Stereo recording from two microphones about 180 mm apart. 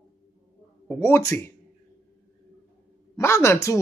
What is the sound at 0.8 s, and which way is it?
Speech, 10° left (ahead or behind).